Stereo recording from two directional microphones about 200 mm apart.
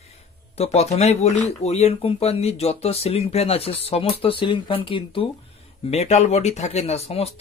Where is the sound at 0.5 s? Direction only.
30° left (ahead or behind).